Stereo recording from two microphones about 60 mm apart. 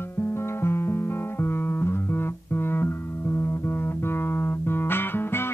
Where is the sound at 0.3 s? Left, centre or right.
Left.